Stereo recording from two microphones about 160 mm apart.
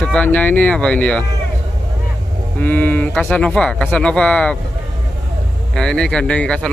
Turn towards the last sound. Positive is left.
turn(degrees=5)  # may be behind; listen again after turning